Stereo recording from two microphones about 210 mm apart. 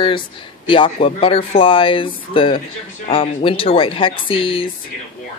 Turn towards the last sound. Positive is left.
turn(degrees=25)  # may be behind; listen again after turning